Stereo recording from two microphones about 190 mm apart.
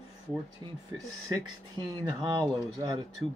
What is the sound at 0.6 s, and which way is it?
Speech, 25° right (ahead or behind).